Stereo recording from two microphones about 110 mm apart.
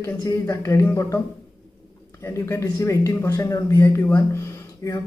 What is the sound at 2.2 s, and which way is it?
Speech, 25° left (ahead or behind).